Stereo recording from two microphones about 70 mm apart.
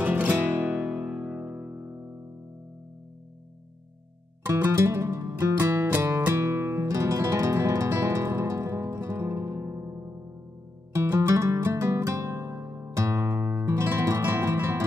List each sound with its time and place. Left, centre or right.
0.0 s music: right
4.6 s music: right